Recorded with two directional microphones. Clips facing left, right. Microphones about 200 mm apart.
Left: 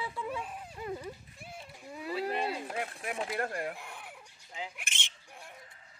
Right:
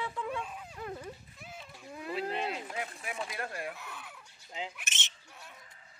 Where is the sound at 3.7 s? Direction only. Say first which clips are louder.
Even; 50° left (ahead or behind).